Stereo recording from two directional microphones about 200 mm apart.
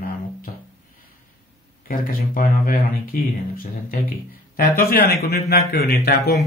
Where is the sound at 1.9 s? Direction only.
45° left (ahead or behind).